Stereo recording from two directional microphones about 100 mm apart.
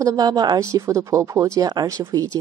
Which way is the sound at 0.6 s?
30° right (ahead or behind).